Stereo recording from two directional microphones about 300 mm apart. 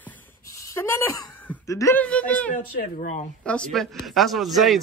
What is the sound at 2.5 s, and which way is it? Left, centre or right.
Speech, left.